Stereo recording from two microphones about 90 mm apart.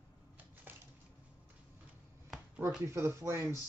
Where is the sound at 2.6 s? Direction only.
35° right (ahead or behind).